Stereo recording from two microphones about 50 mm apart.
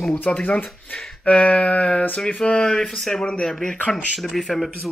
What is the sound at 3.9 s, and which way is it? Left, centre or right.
Speech, centre.